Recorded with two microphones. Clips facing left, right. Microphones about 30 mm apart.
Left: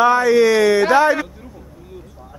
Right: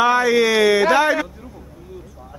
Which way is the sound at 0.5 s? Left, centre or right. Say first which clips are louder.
Left 1 dB; right.